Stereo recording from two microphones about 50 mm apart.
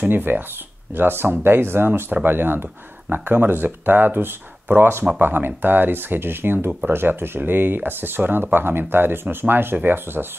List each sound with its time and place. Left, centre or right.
0.0 s speech: right
10.2 s speech: centre